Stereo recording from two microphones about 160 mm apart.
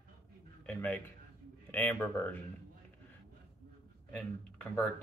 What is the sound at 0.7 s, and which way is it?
Speech, 10° left (ahead or behind).